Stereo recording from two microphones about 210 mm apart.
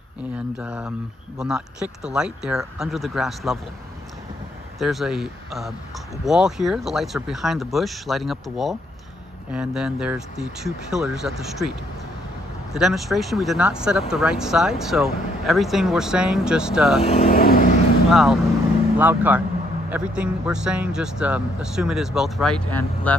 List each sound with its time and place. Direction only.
0.6 s speech: 5° right (ahead or behind)
4.7 s speech: centre (ahead or behind)
12.7 s speech: centre (ahead or behind)
17.0 s speech: 30° left (ahead or behind)
17.4 s vehicle: 40° left (ahead or behind)
18.1 s speech: centre (ahead or behind)